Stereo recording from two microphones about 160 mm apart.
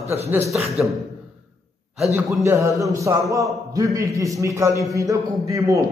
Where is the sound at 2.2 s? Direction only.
20° right (ahead or behind).